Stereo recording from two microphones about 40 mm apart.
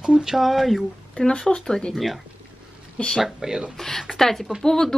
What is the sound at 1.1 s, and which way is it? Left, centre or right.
Speech, left.